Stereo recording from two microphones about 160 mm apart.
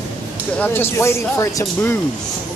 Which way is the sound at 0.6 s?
15° left (ahead or behind).